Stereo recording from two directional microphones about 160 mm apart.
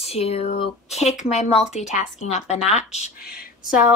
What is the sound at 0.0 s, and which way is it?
Speech, 40° left (ahead or behind).